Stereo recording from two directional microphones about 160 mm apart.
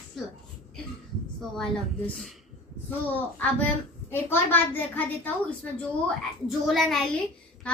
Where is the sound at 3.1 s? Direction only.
10° left (ahead or behind).